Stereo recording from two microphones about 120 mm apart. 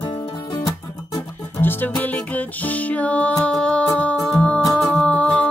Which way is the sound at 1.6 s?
15° left (ahead or behind).